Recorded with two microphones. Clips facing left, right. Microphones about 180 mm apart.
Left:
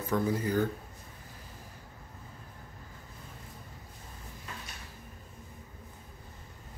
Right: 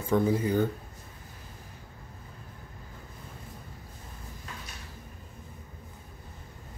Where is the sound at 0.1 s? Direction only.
25° right (ahead or behind).